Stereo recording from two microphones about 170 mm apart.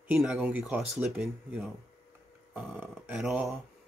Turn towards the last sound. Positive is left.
turn(degrees=0)  # may be behind; listen again after turning